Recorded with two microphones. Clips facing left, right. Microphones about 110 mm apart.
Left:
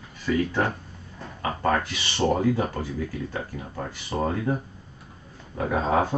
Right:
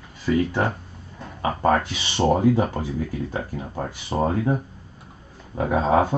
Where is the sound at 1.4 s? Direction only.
25° right (ahead or behind).